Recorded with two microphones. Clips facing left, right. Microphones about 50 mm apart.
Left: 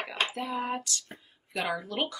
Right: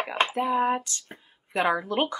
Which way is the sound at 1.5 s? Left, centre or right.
Right.